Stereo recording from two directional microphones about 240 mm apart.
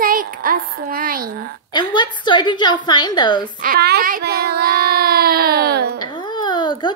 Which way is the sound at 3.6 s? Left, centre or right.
Right.